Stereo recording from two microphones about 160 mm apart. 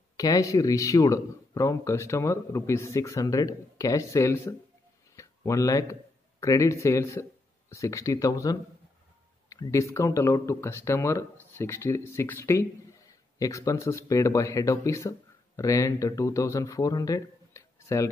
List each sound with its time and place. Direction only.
0.2 s speech: 20° left (ahead or behind)